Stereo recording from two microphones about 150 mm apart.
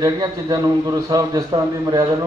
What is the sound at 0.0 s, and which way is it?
A man's voice, 25° right (ahead or behind).